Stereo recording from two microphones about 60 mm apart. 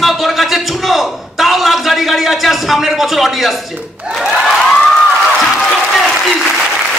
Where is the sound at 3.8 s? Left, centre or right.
Right.